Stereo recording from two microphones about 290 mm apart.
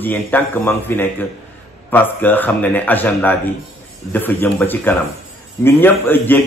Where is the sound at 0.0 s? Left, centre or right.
Centre.